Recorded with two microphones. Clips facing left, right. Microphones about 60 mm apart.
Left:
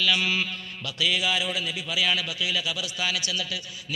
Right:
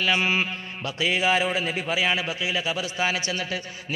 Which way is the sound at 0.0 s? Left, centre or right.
Right.